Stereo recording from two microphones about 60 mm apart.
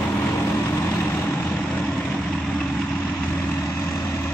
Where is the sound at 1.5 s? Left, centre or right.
Left.